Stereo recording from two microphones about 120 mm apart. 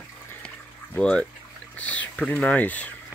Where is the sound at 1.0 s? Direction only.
10° left (ahead or behind).